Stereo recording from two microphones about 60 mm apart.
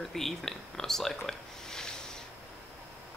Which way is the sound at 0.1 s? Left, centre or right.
Centre.